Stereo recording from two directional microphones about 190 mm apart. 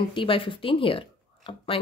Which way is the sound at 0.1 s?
25° left (ahead or behind).